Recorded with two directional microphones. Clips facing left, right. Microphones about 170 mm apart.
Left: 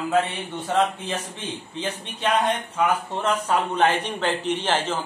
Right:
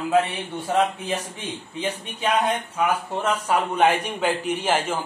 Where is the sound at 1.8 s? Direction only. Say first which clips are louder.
Right 2 dB; 10° right (ahead or behind).